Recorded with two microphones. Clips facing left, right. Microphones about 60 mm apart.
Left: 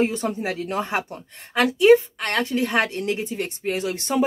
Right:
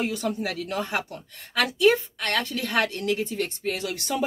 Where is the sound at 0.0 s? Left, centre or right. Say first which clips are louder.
Left 4 dB; left.